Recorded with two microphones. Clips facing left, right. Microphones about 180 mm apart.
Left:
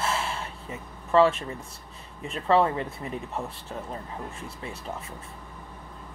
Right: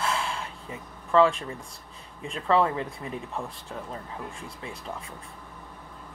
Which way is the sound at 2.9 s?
5° left (ahead or behind).